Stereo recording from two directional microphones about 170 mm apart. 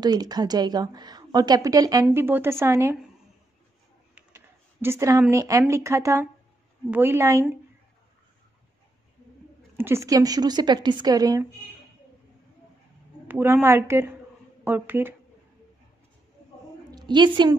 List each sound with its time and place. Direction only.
0.0 s a woman's voice: 25° right (ahead or behind)
4.8 s a woman's voice: 15° right (ahead or behind)
9.8 s a woman's voice: 15° right (ahead or behind)
13.3 s a woman's voice: 10° right (ahead or behind)
16.9 s a sound: 25° right (ahead or behind)